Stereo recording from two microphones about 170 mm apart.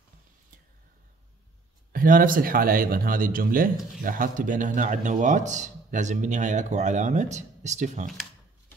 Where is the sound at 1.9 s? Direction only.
55° right (ahead or behind).